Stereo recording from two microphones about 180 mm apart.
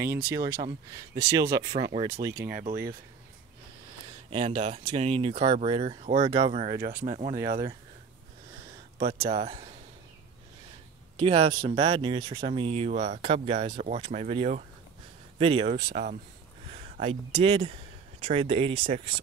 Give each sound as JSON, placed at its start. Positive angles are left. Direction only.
{"t": 0.0, "sound": "speech", "side_deg": -15}
{"t": 2.2, "sound": "speech", "side_deg": -15}
{"t": 4.3, "sound": "speech", "side_deg": -35}
{"t": 6.7, "sound": "speech", "side_deg": -55}
{"t": 8.9, "sound": "speech", "side_deg": -35}
{"t": 11.1, "sound": "speech", "side_deg": -30}
{"t": 15.3, "sound": "speech", "side_deg": -30}
{"t": 16.0, "sound": "speech", "side_deg": -45}
{"t": 17.0, "sound": "speech", "side_deg": -30}